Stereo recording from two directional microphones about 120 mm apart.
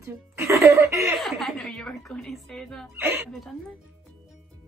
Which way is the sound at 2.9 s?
20° right (ahead or behind).